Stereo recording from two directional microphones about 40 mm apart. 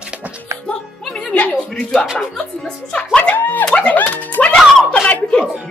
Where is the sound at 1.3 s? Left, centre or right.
Left.